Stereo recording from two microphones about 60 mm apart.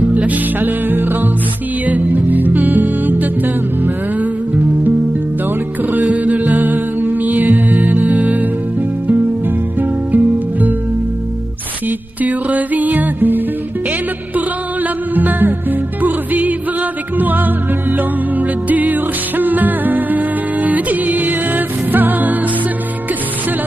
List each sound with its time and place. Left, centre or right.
0.0 s music: right
5.9 s music: right
9.8 s music: right
12.2 s music: right